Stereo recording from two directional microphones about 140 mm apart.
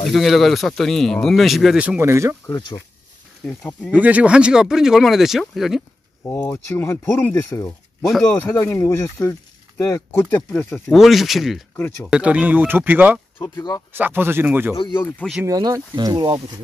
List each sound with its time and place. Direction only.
0.0 s speech: centre (ahead or behind); by 2.3 s 20° right (ahead or behind)
3.4 s speech: 5° left (ahead or behind)
3.9 s speech: 10° right (ahead or behind)
6.2 s speech: 15° left (ahead or behind)
8.0 s speech: centre (ahead or behind)
8.3 s speech: 20° left (ahead or behind)
10.9 s speech: centre (ahead or behind)
11.7 s speech: 15° left (ahead or behind)
12.1 s speech: 10° right (ahead or behind)
13.4 s speech: 25° left (ahead or behind)
13.9 s speech: 15° right (ahead or behind)
15.0 s speech: 15° left (ahead or behind)
15.4 s speech: 25° right (ahead or behind)